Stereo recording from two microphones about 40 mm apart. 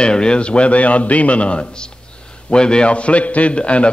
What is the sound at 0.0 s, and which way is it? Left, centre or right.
A man's voice, left.